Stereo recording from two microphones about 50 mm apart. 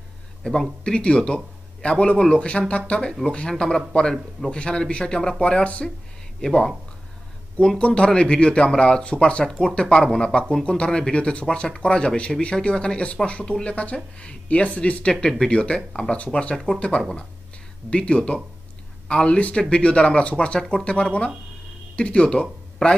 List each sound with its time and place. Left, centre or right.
0.4 s speech: centre
6.4 s speech: centre
7.5 s speech: centre
17.8 s speech: left